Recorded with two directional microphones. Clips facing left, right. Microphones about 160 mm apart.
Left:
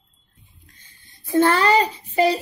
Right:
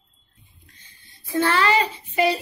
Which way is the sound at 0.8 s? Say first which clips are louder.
Left 2 dB; 50° left (ahead or behind).